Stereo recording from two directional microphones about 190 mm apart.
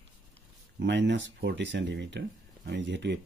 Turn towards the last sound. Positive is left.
turn(degrees=-70)  # may be behind; listen again after turning